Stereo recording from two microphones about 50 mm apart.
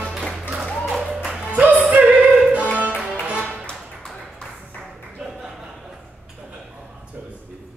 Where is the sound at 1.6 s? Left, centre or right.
Right.